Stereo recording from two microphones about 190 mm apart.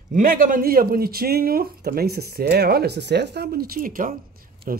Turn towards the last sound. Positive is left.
turn(degrees=-45)  # may be behind; listen again after turning